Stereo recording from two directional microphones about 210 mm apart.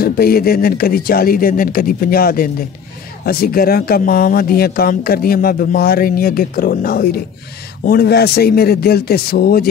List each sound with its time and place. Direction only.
0.0 s speech: 45° left (ahead or behind)